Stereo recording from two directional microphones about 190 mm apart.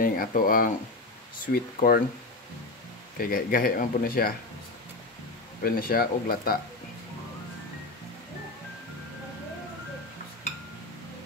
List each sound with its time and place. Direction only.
0.0 s speech: 50° left (ahead or behind)
3.2 s speech: 50° left (ahead or behind)
5.6 s speech: 50° left (ahead or behind)